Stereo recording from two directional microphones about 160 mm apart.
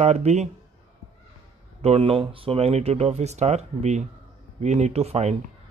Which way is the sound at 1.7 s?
40° right (ahead or behind).